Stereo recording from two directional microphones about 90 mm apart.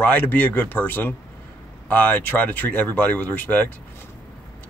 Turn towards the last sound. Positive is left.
turn(degrees=20)  # may be behind; listen again after turning